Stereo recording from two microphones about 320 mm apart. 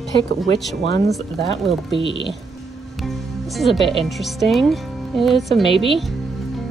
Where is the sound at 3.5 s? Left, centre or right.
Centre.